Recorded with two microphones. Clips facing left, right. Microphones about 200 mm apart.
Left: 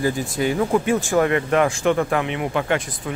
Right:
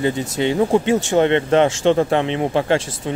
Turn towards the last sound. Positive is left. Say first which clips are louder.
# right 4 dB
turn(degrees=-30)  # may be behind; listen again after turning